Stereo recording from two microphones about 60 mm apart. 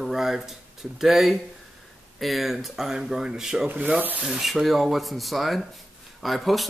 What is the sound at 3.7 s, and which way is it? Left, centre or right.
Rub, right.